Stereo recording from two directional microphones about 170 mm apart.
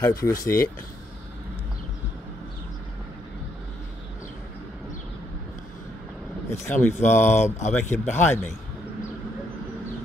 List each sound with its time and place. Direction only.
0.0 s speech: 20° left (ahead or behind)
6.5 s speech: 15° left (ahead or behind)
7.4 s speech: 40° left (ahead or behind)
8.1 s speech: 15° left (ahead or behind)